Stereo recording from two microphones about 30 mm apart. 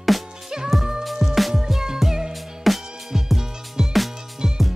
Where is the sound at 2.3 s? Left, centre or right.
Centre.